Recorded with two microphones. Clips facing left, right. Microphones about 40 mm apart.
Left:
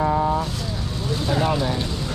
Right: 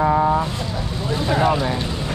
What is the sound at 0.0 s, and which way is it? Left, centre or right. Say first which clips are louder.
Vehicle: right 3 dB; right.